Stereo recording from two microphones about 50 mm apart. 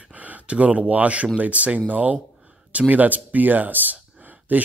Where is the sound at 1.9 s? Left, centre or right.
Right.